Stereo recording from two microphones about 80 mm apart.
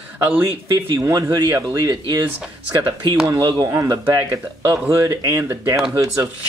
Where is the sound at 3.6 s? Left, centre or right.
Right.